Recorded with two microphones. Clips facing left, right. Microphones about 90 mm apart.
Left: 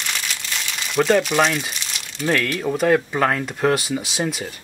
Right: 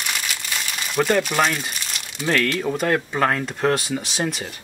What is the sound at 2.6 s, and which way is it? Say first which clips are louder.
Speech: left 3 dB; centre (ahead or behind).